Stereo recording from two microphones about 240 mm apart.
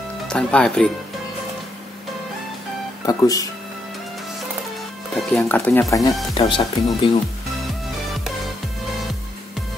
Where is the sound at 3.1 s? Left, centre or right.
Centre.